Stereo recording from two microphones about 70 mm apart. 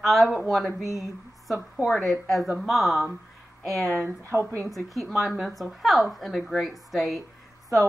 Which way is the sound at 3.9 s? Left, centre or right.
Right.